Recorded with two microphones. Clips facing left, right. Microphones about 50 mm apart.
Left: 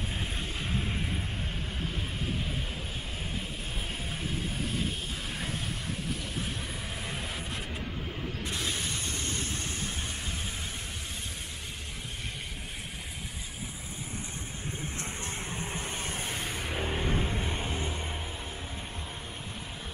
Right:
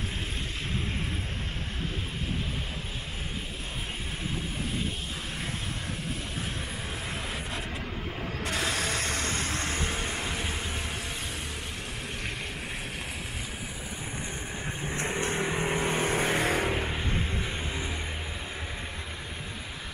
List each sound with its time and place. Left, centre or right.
8.5 s mechanisms: right
15.0 s vehicle: right
17.6 s music: left